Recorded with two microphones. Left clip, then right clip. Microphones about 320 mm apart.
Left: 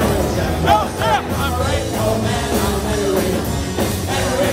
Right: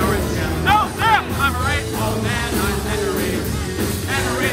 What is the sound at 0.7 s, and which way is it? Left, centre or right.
Vehicle, centre.